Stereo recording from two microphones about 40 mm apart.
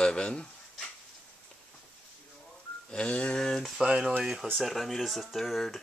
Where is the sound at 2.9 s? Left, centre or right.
Left.